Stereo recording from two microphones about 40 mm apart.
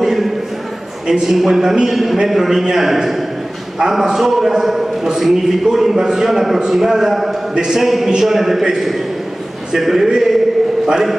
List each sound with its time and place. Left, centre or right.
0.0 s a sound: centre
1.0 s a man's voice: centre
7.8 s a man's voice: centre